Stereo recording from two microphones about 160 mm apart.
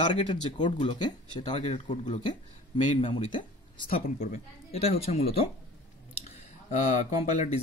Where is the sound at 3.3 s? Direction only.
30° left (ahead or behind).